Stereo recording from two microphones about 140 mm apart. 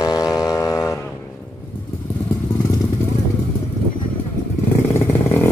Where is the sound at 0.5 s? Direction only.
20° left (ahead or behind).